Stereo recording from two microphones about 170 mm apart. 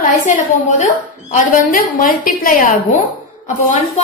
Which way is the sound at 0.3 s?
45° left (ahead or behind).